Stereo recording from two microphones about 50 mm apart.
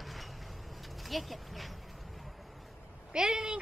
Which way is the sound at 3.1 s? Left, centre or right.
Centre.